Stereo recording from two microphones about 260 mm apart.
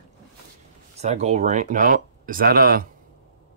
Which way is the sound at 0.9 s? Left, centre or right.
Right.